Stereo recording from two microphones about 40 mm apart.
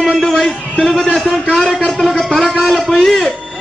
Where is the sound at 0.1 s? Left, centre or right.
Centre.